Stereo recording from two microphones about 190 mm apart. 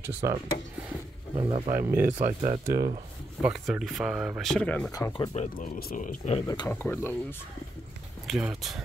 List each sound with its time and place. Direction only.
0.0 s speech: 15° right (ahead or behind)
3.4 s speech: 5° right (ahead or behind)
4.9 s speech: 20° left (ahead or behind)
5.3 s speech: 40° left (ahead or behind)
6.4 s speech: 20° left (ahead or behind)
8.3 s speech: centre (ahead or behind)